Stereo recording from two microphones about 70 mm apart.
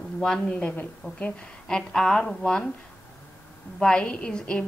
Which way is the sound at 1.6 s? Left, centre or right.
Centre.